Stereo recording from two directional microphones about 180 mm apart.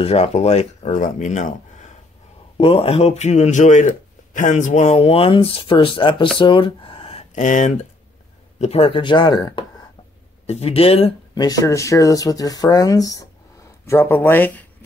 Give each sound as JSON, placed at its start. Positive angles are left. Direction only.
{"t": 0.0, "sound": "speech", "side_deg": 35}
{"t": 2.5, "sound": "speech", "side_deg": 30}
{"t": 10.4, "sound": "speech", "side_deg": 35}
{"t": 11.3, "sound": "speech", "side_deg": 20}